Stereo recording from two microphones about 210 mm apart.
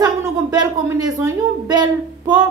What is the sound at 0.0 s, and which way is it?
A woman's voice, 20° right (ahead or behind).